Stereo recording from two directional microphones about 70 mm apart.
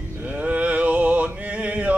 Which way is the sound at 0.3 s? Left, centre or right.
Right.